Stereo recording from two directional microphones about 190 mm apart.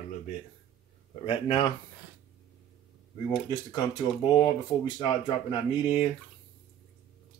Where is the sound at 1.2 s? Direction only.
30° left (ahead or behind).